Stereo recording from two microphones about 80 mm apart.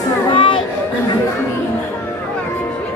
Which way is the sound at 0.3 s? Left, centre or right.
Left.